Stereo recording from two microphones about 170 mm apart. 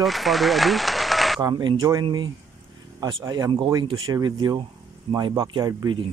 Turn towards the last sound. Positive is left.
turn(degrees=-25)  # may be behind; listen again after turning